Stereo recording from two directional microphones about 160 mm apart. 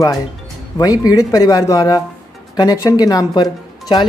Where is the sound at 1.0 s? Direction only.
20° left (ahead or behind).